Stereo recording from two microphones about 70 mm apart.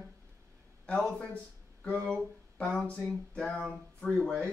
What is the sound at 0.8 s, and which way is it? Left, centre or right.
Speech, centre.